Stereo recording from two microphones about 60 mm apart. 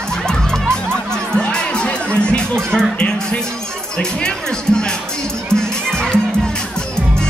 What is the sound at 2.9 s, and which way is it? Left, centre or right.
Music, left.